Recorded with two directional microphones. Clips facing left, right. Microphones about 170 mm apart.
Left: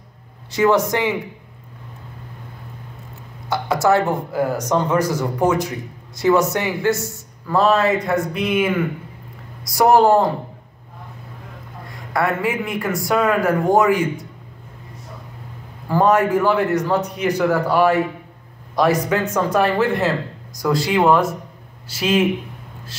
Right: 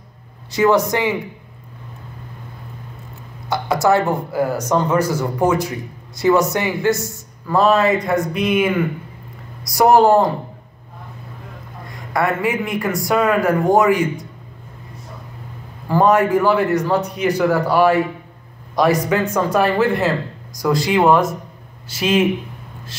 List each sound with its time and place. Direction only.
0.6 s speech: 10° right (ahead or behind)
3.4 s speech: 15° right (ahead or behind)
9.7 s speech: 15° right (ahead or behind)
12.1 s speech: 15° right (ahead or behind)
15.9 s speech: 15° right (ahead or behind)